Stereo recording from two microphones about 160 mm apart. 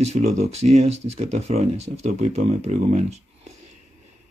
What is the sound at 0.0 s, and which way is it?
Speech, 45° right (ahead or behind).